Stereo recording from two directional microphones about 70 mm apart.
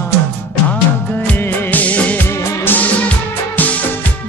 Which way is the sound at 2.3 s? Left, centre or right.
Left.